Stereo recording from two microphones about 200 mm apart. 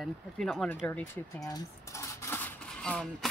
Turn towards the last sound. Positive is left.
turn(degrees=5)  # may be behind; listen again after turning